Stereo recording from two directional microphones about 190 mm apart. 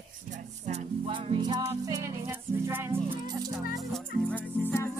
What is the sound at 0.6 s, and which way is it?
Music, 30° right (ahead or behind).